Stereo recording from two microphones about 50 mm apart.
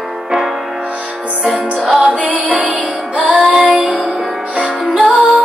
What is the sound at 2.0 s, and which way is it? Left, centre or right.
Music, right.